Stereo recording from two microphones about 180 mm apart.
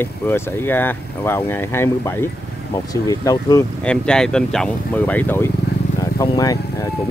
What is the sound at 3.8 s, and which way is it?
Speech, 5° left (ahead or behind).